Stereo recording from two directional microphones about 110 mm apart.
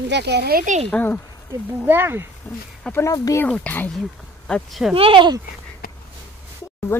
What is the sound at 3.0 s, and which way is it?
Speech, 30° left (ahead or behind).